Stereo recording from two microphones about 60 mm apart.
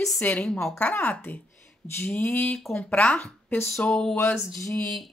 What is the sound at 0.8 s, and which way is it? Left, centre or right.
A woman's voice, left.